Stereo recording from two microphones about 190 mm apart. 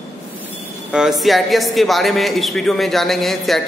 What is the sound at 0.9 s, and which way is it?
Speech, 5° right (ahead or behind).